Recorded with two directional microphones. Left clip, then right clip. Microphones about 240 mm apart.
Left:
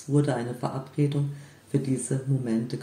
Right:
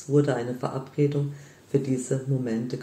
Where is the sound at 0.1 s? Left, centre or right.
Centre.